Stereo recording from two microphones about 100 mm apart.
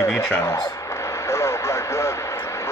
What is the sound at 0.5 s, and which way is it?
Vehicle, 35° left (ahead or behind).